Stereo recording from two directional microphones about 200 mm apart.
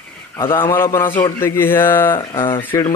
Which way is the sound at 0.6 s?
15° left (ahead or behind).